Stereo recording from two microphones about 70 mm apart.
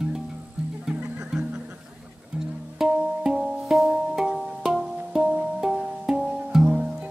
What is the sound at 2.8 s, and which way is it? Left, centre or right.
Music, centre.